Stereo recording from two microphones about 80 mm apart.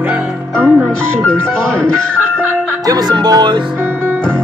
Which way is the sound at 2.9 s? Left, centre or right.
Right.